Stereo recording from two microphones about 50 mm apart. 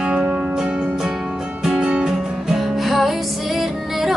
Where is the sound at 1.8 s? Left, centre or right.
Right.